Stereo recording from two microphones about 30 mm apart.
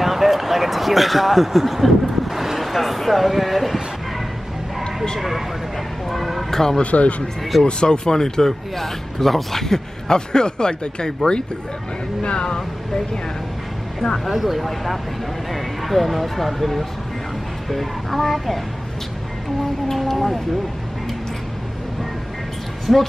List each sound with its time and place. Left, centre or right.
0.0 s speech: centre
6.0 s speech: centre
6.5 s speech: centre
6.8 s speech: left
7.6 s speech: left
12.2 s speech: left
14.2 s music: centre
15.5 s speech: centre
17.6 s music: centre
19.9 s music: centre
22.9 s music: centre